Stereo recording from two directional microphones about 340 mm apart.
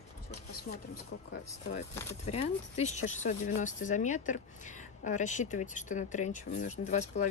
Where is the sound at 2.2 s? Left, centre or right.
Centre.